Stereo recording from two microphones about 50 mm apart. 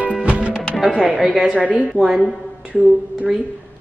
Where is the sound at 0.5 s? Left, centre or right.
Left.